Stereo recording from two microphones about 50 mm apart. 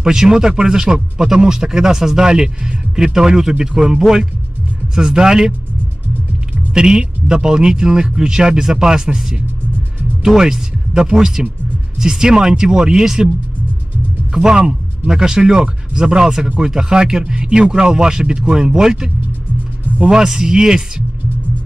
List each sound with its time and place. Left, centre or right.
0.0 s speech: centre
6.7 s speech: centre
14.3 s a man's voice: centre